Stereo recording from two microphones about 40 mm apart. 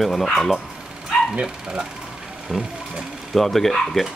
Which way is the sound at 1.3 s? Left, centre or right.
Right.